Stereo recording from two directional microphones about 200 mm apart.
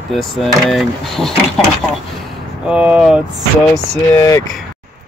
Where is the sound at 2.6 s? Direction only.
5° right (ahead or behind).